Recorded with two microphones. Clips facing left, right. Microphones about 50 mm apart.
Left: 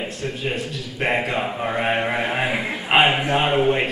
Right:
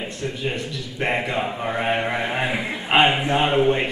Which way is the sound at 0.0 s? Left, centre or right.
Centre.